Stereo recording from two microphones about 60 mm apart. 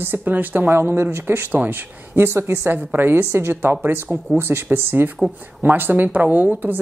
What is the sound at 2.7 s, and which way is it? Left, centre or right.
Speech, right.